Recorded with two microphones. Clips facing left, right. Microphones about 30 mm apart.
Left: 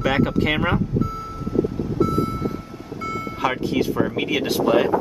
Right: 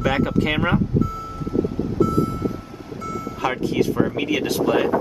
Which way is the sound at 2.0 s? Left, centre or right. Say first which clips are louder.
Right 1 dB; centre.